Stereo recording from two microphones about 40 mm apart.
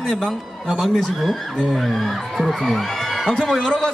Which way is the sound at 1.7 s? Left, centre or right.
Centre.